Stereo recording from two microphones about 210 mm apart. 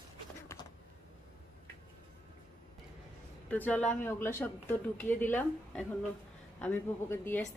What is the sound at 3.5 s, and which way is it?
A woman's voice, 10° left (ahead or behind).